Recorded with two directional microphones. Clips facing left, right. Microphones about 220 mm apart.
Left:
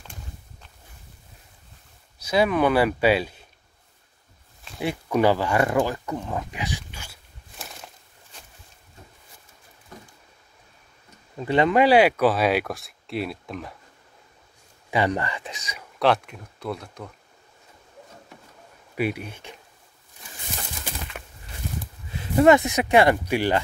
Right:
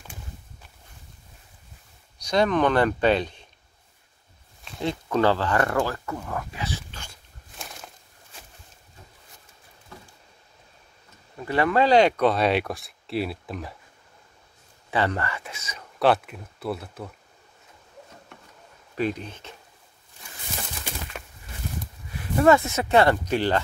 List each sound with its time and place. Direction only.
2.1 s speech: 5° left (ahead or behind)
4.7 s a sound: 10° left (ahead or behind)
11.3 s speech: 20° left (ahead or behind); by 13.7 s centre (ahead or behind)
14.9 s speech: 15° left (ahead or behind)
16.0 s speech: centre (ahead or behind)
18.9 s speech: 10° left (ahead or behind)
22.4 s speech: 20° left (ahead or behind)